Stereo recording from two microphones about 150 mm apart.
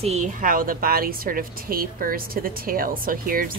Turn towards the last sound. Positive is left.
turn(degrees=-70)  # may be behind; listen again after turning